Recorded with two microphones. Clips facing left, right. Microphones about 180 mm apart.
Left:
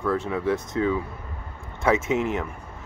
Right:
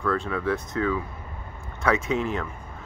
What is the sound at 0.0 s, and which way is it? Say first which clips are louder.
Speech: left 1 dB; 20° left (ahead or behind).